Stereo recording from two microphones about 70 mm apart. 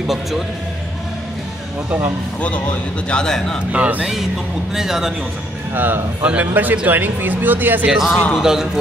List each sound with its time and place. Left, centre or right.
0.0 s speech: centre
3.1 s a man's voice: centre
3.7 s speech: right
4.7 s a man's voice: centre
5.8 s speech: right
7.9 s a man's voice: centre